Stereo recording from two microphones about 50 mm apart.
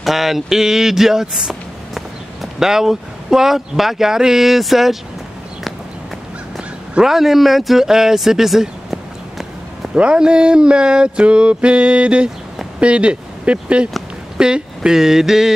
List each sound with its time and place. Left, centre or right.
0.0 s speech: centre
7.0 s speech: centre
9.9 s a sound: centre
12.8 s speech: right